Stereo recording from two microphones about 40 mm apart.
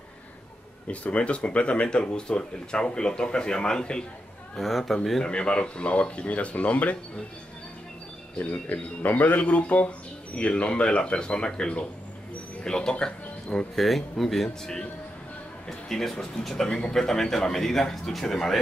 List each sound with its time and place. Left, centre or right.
0.8 s speech: left
4.6 s speech: centre
5.2 s speech: left
8.4 s speech: left
13.0 s music: left
13.7 s speech: centre
15.9 s a man's voice: centre